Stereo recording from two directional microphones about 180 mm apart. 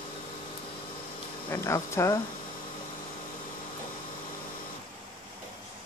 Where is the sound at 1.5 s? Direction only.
15° left (ahead or behind).